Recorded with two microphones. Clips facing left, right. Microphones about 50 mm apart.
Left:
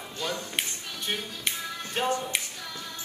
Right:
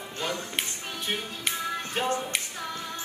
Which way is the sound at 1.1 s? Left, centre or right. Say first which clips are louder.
Right 1 dB; centre.